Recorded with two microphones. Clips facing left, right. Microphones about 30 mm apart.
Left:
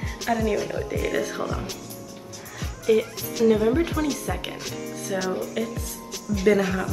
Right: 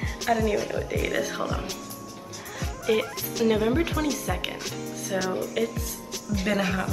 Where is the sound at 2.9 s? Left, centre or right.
Right.